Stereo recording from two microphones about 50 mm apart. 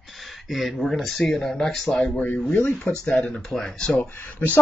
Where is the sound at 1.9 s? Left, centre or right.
Left.